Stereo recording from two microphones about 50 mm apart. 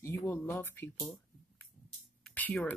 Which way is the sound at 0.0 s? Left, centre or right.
Left.